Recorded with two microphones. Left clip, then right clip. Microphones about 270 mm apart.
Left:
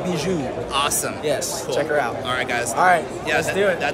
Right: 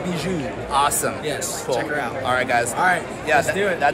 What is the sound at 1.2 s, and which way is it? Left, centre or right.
Speech, left.